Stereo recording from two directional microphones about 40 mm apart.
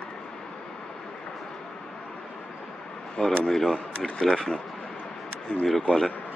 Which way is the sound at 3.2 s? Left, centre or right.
Left.